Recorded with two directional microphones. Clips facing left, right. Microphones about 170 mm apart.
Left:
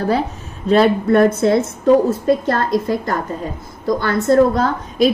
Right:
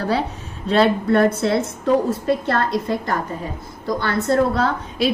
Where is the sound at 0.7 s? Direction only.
45° left (ahead or behind).